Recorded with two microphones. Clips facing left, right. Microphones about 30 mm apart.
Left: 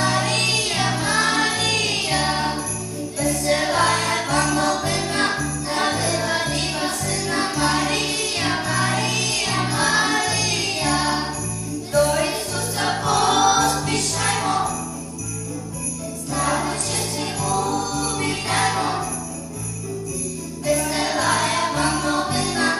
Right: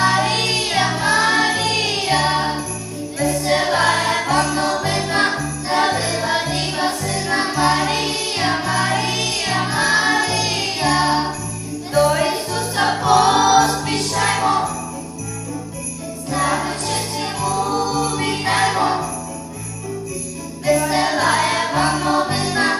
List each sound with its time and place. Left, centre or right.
0.0 s music: centre
6.5 s music: centre; by 9.3 s right
9.3 s music: centre
13.0 s choir: right
13.8 s music: right
16.3 s music: right
20.6 s music: right